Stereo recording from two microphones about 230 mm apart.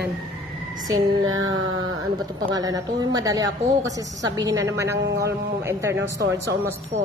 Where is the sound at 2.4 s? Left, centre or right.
Centre.